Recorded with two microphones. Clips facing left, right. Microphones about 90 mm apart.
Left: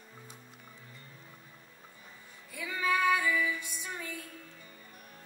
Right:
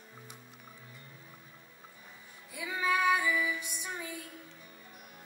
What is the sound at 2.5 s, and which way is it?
Female singing, 15° right (ahead or behind).